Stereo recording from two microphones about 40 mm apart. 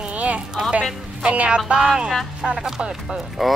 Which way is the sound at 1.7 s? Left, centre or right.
Centre.